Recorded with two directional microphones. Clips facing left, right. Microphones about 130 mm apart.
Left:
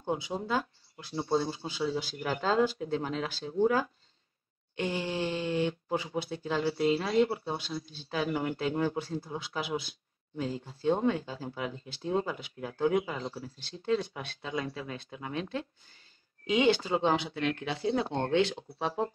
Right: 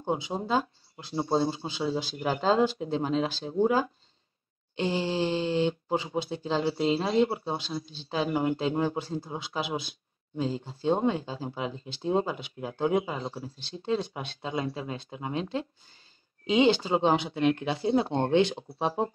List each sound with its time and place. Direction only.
0.0 s speech: 25° right (ahead or behind)